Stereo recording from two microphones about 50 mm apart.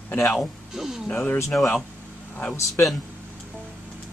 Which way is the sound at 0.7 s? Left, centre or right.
Centre.